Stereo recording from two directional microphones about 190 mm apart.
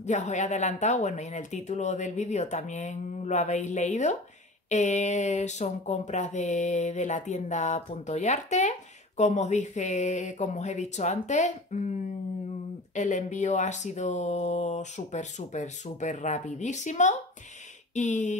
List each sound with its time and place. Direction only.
0.0 s speech: 40° left (ahead or behind)